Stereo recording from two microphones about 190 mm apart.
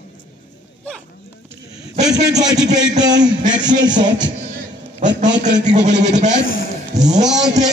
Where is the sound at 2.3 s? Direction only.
20° right (ahead or behind).